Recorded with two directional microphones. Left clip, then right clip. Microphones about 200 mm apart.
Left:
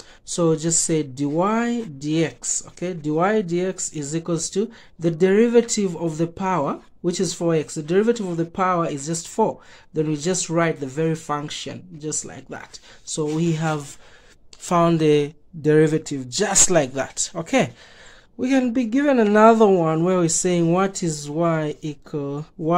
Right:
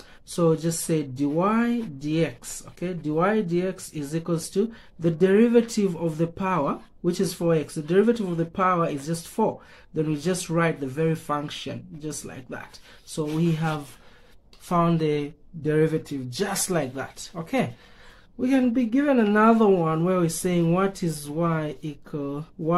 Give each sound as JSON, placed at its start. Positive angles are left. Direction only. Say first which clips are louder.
{"t": 0.3, "sound": "speech", "louder": "left 3 dB", "side_deg": 35}